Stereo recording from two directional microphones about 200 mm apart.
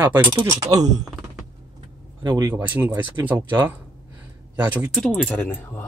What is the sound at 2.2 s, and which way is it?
Speech, 20° right (ahead or behind).